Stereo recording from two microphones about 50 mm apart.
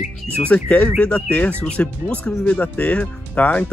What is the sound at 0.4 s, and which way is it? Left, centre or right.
Speech, left.